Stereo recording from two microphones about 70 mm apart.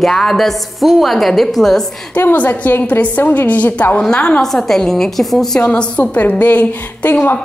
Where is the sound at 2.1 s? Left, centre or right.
Left; by 5.4 s centre.